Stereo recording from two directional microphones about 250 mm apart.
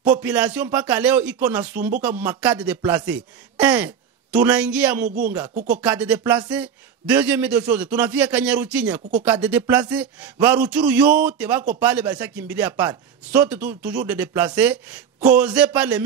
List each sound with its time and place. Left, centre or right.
0.0 s speech: centre
5.0 s speech: right
5.7 s speech: centre